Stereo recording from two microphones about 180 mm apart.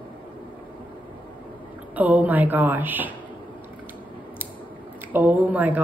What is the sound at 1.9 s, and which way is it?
A woman's voice, 10° right (ahead or behind).